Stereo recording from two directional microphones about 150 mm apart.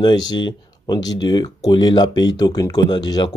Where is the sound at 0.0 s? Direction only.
30° left (ahead or behind).